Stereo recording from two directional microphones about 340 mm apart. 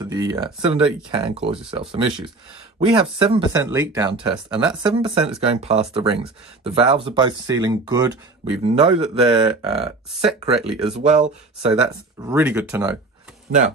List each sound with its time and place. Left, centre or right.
0.0 s speech: centre
4.8 s speech: centre
9.5 s speech: centre
10.4 s speech: centre
11.8 s speech: centre